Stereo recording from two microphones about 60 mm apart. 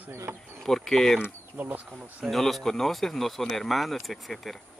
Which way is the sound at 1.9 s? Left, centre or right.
Right.